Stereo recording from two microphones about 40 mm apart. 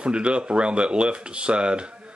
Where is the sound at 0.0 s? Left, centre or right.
Right.